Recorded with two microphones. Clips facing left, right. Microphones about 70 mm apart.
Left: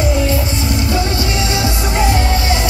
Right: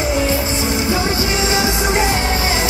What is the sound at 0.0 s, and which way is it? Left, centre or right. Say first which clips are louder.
Music: left 1 dB; right.